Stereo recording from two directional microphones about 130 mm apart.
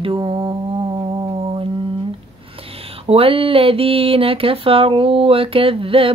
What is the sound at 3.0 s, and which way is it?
Speech, 45° right (ahead or behind).